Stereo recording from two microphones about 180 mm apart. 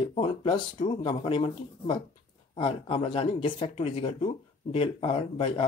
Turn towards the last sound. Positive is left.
turn(degrees=30)  # may be behind; listen again after turning